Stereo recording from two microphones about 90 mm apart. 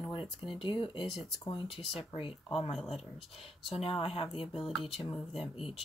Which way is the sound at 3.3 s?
90° left.